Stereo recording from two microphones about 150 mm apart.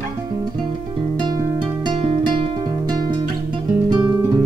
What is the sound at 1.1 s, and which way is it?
Music, 30° right (ahead or behind).